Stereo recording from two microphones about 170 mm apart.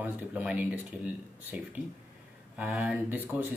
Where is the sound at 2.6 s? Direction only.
10° right (ahead or behind).